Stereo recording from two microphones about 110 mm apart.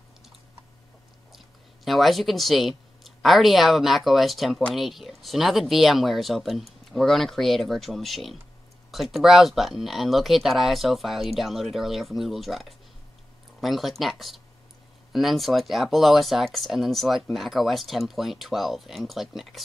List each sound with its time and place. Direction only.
1.9 s speech: centre (ahead or behind)